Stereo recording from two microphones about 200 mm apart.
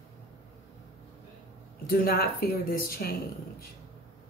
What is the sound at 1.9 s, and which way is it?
A woman's voice, 50° left (ahead or behind).